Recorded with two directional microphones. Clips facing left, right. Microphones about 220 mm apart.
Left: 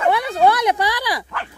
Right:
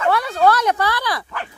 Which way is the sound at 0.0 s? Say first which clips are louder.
Left 1 dB; 15° left (ahead or behind).